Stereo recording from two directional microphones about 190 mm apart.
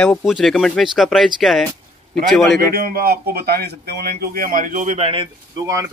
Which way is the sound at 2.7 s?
50° right (ahead or behind).